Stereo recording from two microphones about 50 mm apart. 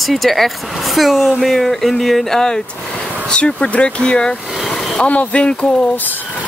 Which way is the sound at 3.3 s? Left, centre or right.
Left.